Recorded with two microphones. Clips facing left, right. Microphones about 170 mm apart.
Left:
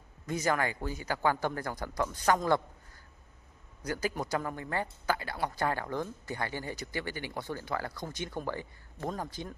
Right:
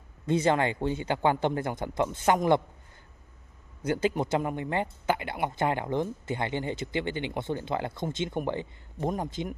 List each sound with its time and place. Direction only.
0.3 s speech: 25° right (ahead or behind)
3.8 s speech: 25° right (ahead or behind)